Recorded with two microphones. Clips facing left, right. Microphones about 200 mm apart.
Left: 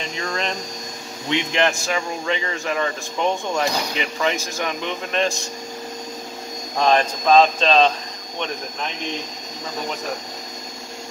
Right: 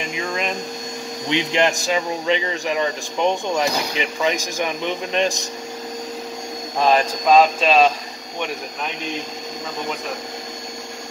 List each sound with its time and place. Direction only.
0.1 s a sound: 10° right (ahead or behind)
1.3 s a man's voice: 15° right (ahead or behind)
6.8 s a man's voice: 10° right (ahead or behind)